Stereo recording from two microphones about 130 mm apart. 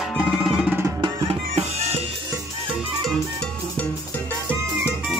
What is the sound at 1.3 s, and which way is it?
Music, 50° right (ahead or behind).